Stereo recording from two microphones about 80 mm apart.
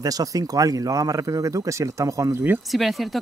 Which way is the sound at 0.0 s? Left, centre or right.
Right.